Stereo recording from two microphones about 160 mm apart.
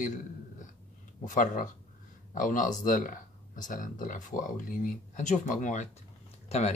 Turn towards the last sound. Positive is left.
turn(degrees=40)  # may be behind; listen again after turning